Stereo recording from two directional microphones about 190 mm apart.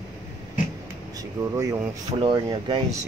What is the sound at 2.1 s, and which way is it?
Speech, 25° right (ahead or behind).